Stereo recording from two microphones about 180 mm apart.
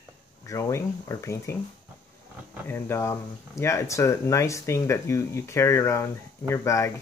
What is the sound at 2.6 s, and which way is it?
Speech, 15° left (ahead or behind).